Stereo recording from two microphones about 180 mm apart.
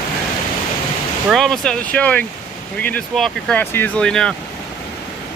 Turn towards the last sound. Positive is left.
turn(degrees=5)  # may be behind; listen again after turning